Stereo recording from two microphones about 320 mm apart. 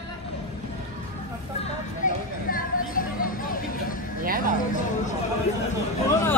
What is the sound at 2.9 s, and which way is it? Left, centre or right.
Vehicle, left.